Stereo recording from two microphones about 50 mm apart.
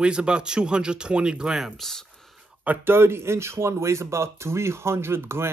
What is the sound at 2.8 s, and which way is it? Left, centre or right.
Speech, right.